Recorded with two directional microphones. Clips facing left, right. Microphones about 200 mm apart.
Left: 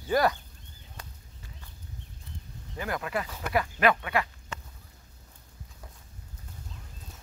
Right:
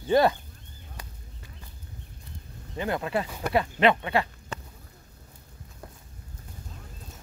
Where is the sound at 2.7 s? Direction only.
25° right (ahead or behind).